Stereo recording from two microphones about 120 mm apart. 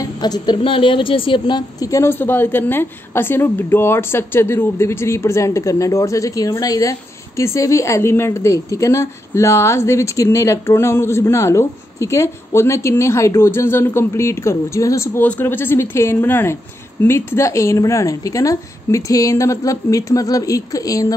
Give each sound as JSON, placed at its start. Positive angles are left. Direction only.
{"t": 0.0, "sound": "speech", "side_deg": 35}
{"t": 0.6, "sound": "speech", "side_deg": 45}
{"t": 1.8, "sound": "a woman's voice", "side_deg": 25}